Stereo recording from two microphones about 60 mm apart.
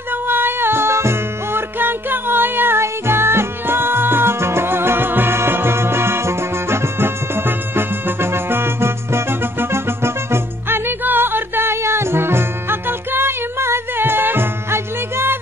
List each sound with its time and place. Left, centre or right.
0.1 s music: right